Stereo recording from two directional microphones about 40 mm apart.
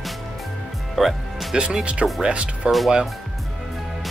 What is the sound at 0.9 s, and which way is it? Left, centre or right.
Music, centre.